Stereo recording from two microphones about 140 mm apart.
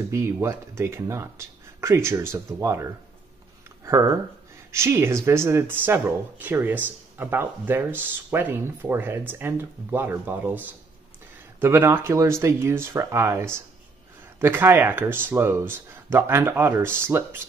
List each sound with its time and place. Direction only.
0.1 s speech: 20° right (ahead or behind)